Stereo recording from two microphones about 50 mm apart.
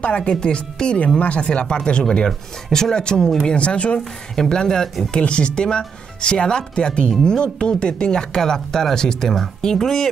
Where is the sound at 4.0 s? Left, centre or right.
Centre.